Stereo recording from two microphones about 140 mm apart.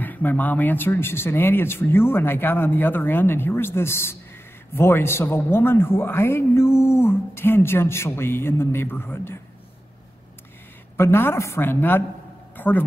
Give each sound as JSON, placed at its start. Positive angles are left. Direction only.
{"t": 0.0, "sound": "a man's voice", "side_deg": 10}
{"t": 11.0, "sound": "a man's voice", "side_deg": 15}
{"t": 12.5, "sound": "a sound", "side_deg": 15}